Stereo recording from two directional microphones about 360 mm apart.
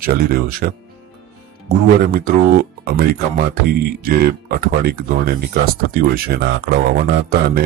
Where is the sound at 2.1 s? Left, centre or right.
Right.